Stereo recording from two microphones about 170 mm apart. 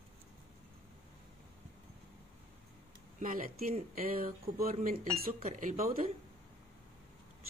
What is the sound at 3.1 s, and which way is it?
Speech, 50° right (ahead or behind).